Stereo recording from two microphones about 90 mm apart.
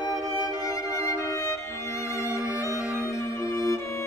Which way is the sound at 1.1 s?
35° left (ahead or behind).